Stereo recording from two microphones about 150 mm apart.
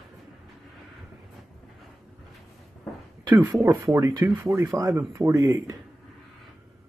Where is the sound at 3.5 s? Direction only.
5° right (ahead or behind).